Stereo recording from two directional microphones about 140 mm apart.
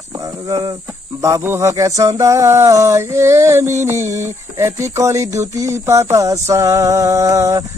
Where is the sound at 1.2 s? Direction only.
20° right (ahead or behind).